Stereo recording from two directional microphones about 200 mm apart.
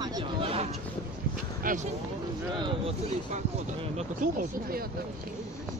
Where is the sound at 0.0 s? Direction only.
20° right (ahead or behind).